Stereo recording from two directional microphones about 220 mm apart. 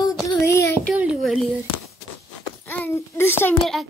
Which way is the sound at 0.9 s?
5° right (ahead or behind).